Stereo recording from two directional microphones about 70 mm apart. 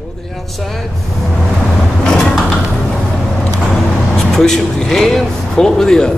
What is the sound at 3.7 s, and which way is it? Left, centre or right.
Vehicle, centre.